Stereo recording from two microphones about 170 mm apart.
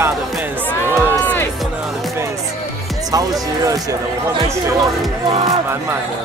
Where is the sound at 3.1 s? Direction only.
20° right (ahead or behind).